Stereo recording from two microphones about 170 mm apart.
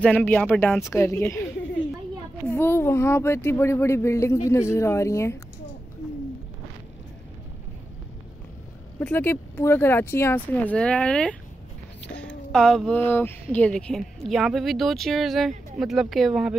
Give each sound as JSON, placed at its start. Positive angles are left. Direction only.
{"t": 0.0, "sound": "speech", "side_deg": 5}
{"t": 9.0, "sound": "speech", "side_deg": 10}